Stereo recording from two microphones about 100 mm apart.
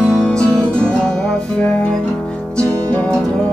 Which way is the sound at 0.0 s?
5° left (ahead or behind).